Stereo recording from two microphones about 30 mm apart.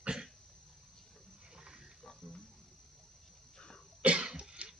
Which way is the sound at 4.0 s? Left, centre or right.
Right.